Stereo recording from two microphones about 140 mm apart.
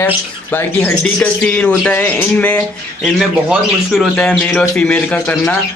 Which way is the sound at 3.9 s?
Centre (ahead or behind).